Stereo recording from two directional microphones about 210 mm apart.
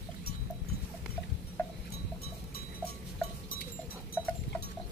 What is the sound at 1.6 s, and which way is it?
Cowbell, 10° left (ahead or behind).